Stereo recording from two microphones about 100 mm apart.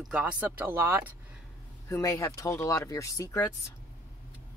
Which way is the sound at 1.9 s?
35° left (ahead or behind).